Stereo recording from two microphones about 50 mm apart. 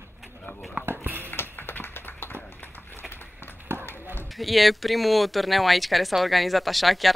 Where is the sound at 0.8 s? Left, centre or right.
Right.